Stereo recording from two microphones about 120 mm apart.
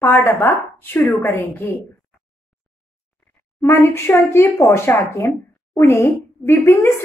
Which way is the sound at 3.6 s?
20° left (ahead or behind).